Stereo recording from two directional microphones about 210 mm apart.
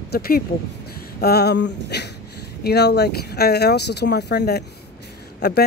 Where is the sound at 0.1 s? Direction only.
45° left (ahead or behind).